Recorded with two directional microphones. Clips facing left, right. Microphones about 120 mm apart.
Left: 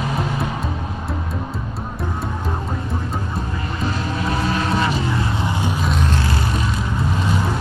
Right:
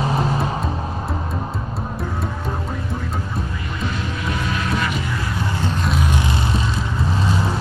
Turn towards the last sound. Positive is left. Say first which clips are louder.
# even
turn(degrees=0)  # may be behind; listen again after turning